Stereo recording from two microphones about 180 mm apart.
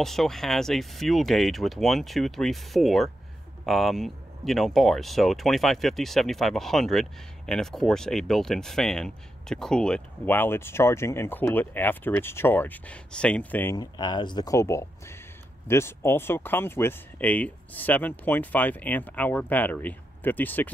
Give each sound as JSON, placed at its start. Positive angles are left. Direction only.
{"t": 0.0, "sound": "speech", "side_deg": 0}
{"t": 13.7, "sound": "speech", "side_deg": 25}